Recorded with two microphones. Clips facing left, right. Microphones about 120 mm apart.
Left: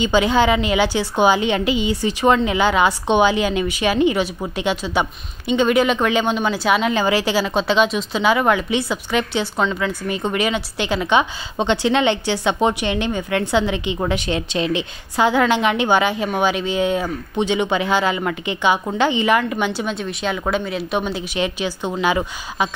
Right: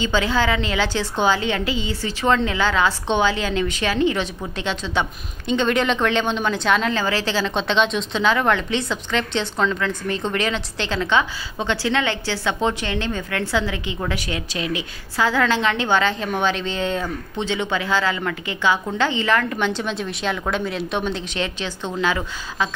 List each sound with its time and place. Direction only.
0.0 s speech: 15° left (ahead or behind)